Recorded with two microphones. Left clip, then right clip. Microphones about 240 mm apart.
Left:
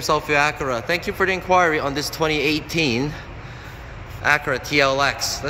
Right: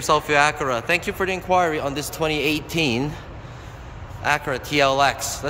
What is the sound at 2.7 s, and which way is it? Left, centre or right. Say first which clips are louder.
Speech: left 1 dB; right.